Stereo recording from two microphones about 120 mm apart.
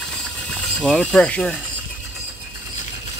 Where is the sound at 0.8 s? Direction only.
Centre (ahead or behind).